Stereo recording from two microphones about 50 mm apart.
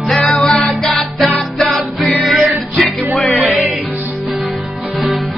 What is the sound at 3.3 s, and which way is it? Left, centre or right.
Music, right.